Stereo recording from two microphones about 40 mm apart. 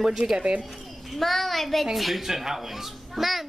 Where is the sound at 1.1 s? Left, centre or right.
Centre.